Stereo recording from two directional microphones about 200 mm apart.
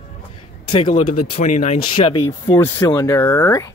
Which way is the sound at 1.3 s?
35° left (ahead or behind).